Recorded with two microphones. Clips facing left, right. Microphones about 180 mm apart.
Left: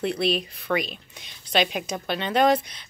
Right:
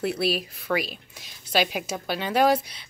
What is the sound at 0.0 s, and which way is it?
Speech, 5° right (ahead or behind).